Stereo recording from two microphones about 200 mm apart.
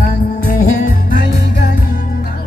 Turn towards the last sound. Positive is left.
turn(degrees=50)  # may be behind; listen again after turning